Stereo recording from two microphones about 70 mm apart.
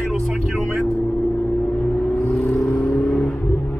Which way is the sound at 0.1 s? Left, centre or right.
Centre.